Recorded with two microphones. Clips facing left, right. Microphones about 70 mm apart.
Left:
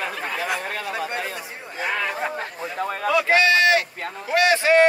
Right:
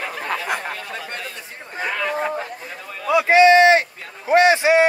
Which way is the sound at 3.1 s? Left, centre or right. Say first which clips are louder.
Right 7 dB; right.